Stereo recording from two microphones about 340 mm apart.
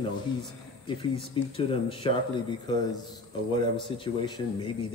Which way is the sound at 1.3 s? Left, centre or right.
Centre.